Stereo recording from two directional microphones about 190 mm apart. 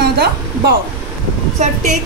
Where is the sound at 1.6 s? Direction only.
35° right (ahead or behind).